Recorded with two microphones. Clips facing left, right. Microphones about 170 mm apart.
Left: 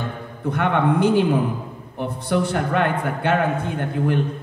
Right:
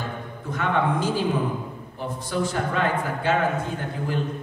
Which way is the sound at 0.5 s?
60° left (ahead or behind).